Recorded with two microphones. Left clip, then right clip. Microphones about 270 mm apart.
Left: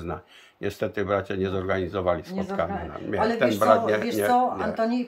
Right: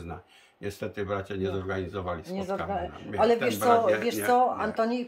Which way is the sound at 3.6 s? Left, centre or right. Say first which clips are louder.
Left 4 dB; centre.